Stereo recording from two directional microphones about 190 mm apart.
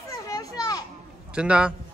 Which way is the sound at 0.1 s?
20° left (ahead or behind).